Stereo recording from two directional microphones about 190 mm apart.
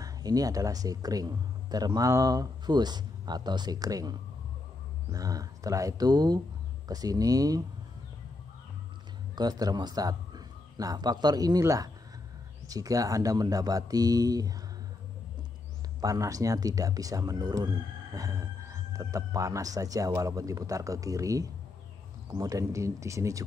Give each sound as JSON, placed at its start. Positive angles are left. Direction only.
{"t": 0.0, "sound": "speech", "side_deg": -20}
{"t": 9.3, "sound": "a man's voice", "side_deg": -20}
{"t": 16.0, "sound": "speech", "side_deg": -20}